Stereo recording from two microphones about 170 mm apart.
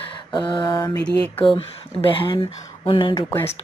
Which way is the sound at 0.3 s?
25° left (ahead or behind).